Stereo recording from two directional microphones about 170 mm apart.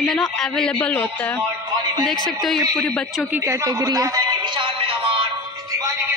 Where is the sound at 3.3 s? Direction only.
15° right (ahead or behind).